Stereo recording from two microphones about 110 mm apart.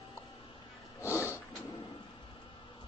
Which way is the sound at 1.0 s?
25° left (ahead or behind).